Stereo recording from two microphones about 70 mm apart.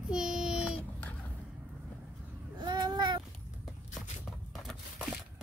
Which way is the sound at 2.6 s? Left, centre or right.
Right.